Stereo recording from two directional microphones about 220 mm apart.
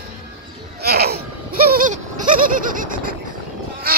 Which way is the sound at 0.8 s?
45° right (ahead or behind).